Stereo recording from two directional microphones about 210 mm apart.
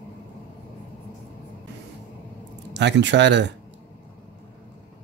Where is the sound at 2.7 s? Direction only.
55° right (ahead or behind).